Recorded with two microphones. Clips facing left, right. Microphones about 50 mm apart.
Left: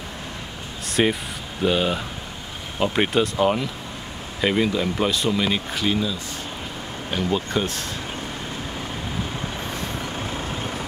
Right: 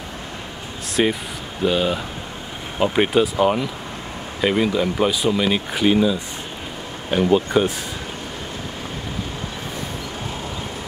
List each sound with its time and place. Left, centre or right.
0.8 s speech: centre
5.7 s speech: centre